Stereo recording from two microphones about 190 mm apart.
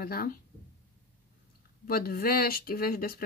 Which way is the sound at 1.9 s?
50° left (ahead or behind).